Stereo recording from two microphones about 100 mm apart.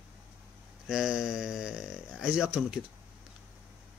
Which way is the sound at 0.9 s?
5° right (ahead or behind).